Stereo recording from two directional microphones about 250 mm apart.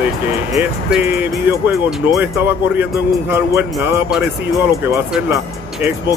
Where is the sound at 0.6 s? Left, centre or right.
Centre.